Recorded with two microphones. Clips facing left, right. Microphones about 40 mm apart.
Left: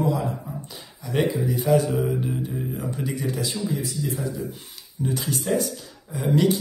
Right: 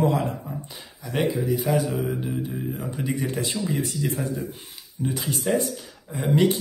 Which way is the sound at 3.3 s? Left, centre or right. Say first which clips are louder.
Even; right.